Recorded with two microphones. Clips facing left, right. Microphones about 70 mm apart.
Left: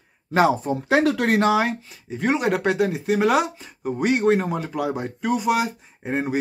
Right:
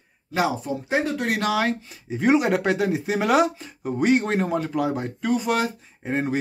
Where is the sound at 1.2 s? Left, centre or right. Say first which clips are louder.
Left 5 dB; left.